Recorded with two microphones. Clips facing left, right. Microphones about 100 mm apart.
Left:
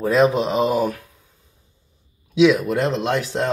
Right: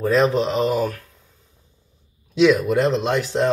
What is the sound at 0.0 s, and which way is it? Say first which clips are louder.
Speech: left 1 dB; 5° left (ahead or behind).